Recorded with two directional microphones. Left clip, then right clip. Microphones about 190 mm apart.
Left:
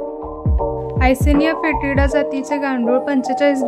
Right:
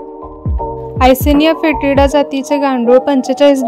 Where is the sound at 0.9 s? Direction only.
30° right (ahead or behind).